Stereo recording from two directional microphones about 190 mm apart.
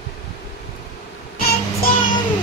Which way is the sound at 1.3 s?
55° left (ahead or behind).